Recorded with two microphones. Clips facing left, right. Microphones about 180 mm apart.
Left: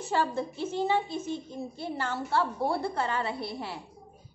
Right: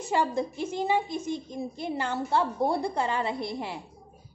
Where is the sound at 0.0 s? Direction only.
15° right (ahead or behind).